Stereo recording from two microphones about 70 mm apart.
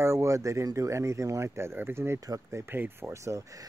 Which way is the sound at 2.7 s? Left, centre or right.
Right.